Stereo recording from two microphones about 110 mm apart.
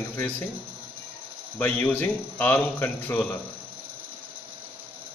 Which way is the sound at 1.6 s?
15° left (ahead or behind).